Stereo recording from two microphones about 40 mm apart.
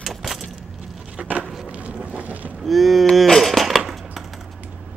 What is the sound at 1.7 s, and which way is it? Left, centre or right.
Boat, right.